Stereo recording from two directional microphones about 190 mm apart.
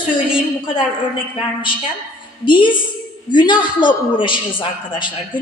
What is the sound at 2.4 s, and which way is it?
A woman's voice, 25° left (ahead or behind).